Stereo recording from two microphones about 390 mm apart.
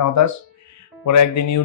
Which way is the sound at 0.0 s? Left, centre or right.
Left.